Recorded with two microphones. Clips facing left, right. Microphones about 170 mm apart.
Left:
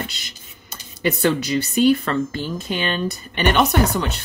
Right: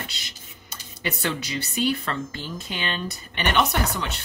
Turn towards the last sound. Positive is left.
turn(degrees=40)  # may be behind; listen again after turning